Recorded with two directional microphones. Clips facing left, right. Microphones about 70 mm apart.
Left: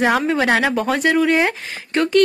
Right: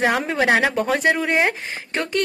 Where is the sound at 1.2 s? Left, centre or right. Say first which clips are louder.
Left 3 dB; centre.